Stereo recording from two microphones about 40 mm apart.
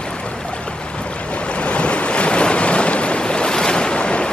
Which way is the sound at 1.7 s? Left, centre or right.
Left.